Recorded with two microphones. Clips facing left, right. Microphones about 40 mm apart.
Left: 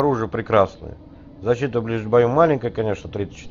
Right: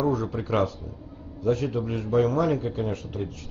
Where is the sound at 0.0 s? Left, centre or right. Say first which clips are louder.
Left 6 dB; left.